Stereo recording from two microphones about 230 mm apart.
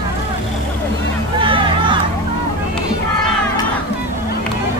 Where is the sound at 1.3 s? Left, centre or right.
Right.